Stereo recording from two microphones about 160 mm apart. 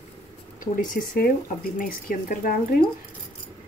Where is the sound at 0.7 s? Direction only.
65° left (ahead or behind).